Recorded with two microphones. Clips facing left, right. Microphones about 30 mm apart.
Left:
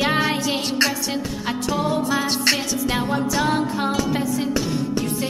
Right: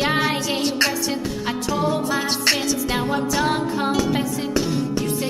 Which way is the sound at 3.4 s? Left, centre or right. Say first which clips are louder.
Even; centre.